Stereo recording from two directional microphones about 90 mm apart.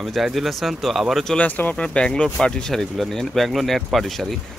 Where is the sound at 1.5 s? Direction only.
20° left (ahead or behind).